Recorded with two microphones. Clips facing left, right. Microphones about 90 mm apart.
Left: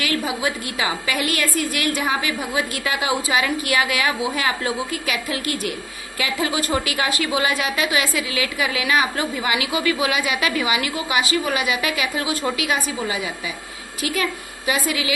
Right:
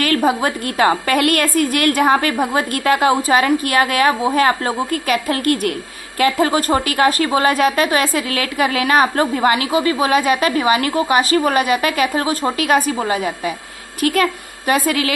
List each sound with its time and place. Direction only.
0.0 s a woman's voice: 50° right (ahead or behind)